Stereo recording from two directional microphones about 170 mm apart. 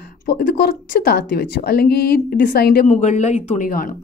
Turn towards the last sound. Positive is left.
turn(degrees=55)  # may be behind; listen again after turning